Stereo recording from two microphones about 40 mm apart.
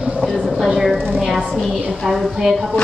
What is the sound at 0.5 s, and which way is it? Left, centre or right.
A woman's voice, centre.